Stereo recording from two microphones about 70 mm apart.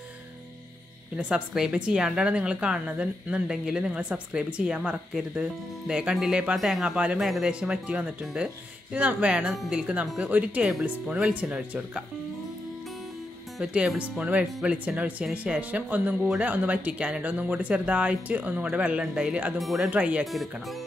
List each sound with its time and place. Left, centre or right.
1.1 s speech: centre
7.6 s speech: centre
13.6 s speech: centre
13.9 s speech: centre
19.6 s speech: centre
19.9 s speech: centre